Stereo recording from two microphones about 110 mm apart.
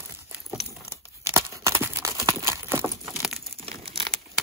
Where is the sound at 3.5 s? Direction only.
55° right (ahead or behind).